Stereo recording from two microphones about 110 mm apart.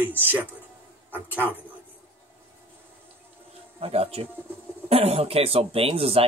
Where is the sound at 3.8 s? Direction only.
65° right (ahead or behind).